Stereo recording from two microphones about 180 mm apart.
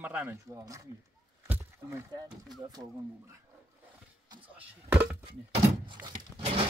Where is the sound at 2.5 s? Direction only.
20° right (ahead or behind).